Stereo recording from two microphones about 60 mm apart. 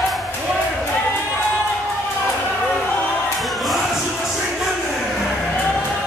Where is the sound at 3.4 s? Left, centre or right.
Centre.